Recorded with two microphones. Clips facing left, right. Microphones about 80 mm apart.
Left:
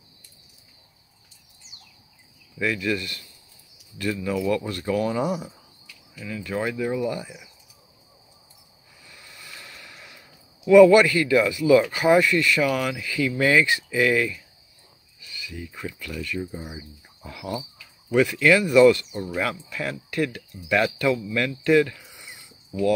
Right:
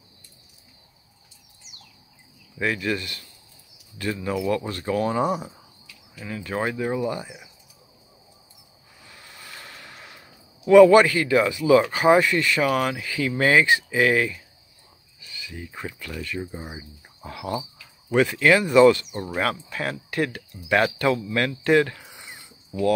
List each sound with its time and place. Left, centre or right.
2.6 s speech: right
9.0 s speech: right